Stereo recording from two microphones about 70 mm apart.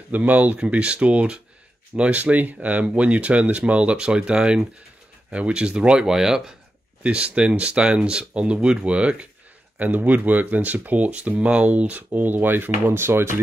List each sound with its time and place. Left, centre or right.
0.1 s speech: right